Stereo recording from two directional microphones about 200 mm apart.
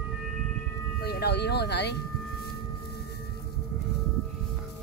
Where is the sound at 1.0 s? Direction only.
50° left (ahead or behind).